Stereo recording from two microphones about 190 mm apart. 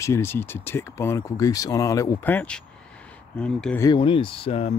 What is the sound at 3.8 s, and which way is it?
Speech, 25° left (ahead or behind).